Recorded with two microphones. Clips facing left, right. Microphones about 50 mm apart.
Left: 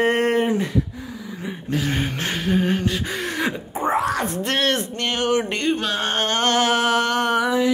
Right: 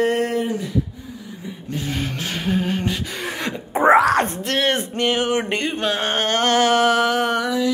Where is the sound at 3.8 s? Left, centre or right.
Right.